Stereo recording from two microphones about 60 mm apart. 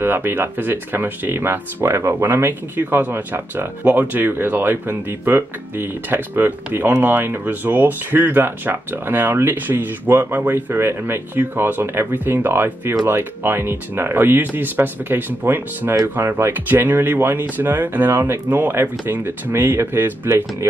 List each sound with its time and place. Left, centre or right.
0.0 s speech: right
2.2 s speech: right
16.6 s speech: right